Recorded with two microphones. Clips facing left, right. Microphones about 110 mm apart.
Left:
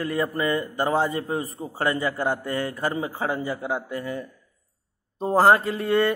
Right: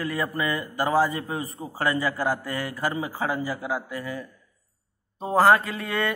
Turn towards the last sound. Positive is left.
turn(degrees=30)  # may be behind; listen again after turning